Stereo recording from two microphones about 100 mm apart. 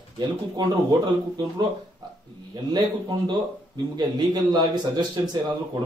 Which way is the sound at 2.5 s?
45° right (ahead or behind).